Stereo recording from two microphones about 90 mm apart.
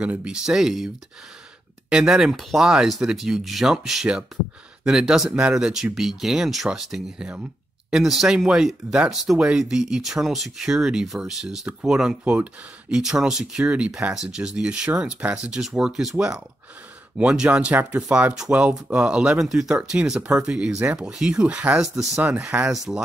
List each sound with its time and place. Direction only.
0.0 s speech: 15° right (ahead or behind)